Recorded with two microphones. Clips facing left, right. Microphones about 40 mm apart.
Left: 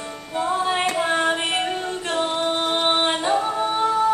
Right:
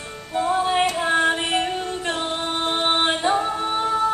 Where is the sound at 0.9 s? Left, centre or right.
Centre.